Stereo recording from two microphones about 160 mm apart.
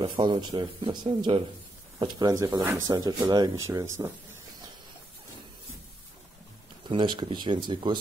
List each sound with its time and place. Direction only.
0.0 s speech: 30° right (ahead or behind)
6.9 s speech: 30° right (ahead or behind)